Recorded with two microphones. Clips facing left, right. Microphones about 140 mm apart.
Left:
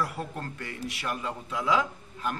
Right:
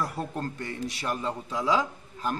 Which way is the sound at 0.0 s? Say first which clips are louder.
Right 2 dB; 35° right (ahead or behind).